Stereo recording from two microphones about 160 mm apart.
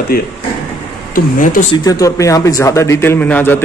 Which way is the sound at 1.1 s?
55° left (ahead or behind).